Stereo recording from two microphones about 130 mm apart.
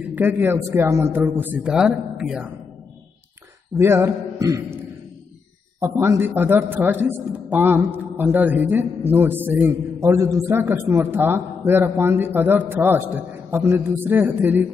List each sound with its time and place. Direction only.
0.1 s a man's voice: 15° right (ahead or behind)
3.7 s a man's voice: 20° right (ahead or behind)
5.8 s a man's voice: 20° right (ahead or behind)